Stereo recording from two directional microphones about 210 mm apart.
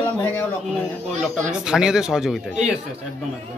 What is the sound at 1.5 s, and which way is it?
A man's voice, 5° right (ahead or behind).